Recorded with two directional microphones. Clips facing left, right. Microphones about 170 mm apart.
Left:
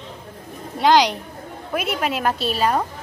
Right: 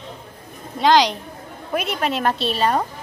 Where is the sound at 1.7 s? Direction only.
5° left (ahead or behind).